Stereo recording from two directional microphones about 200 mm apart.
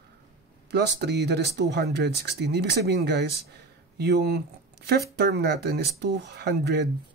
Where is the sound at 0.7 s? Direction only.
55° right (ahead or behind).